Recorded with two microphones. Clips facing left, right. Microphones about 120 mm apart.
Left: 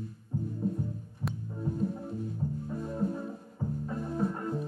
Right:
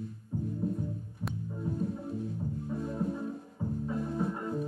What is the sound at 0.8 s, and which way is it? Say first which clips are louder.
Music: left 1 dB; centre (ahead or behind).